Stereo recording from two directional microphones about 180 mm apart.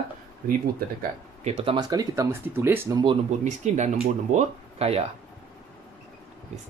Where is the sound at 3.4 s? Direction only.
40° right (ahead or behind).